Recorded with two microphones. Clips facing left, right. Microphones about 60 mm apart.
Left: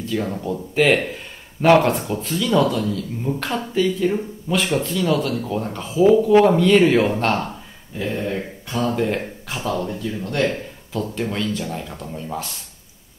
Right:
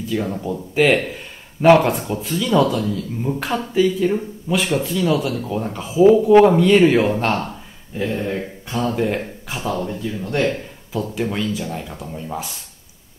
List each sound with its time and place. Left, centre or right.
0.0 s speech: centre
8.8 s speech: centre